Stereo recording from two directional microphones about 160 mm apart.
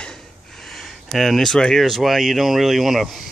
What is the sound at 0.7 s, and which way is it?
Speech, centre (ahead or behind).